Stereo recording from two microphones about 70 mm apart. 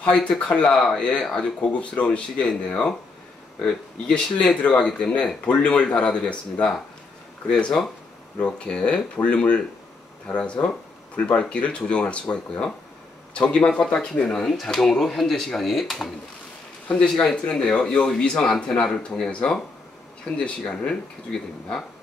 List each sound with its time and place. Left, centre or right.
0.0 s speech: centre
16.8 s speech: centre